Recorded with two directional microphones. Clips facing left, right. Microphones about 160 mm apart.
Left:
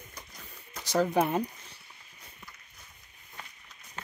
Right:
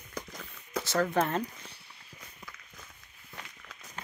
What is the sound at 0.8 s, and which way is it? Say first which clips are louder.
Speech: left 2 dB; 15° left (ahead or behind).